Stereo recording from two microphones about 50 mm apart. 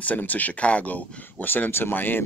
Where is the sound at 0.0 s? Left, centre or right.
Left.